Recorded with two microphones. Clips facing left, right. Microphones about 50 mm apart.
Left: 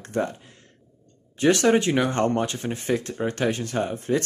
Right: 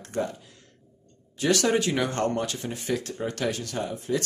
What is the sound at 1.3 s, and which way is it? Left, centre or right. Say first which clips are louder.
Speech: left 4 dB; left.